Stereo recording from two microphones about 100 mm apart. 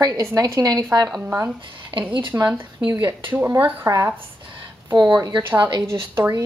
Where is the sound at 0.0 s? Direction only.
35° right (ahead or behind).